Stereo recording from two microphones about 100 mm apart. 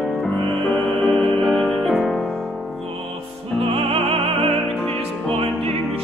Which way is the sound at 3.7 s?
70° right (ahead or behind).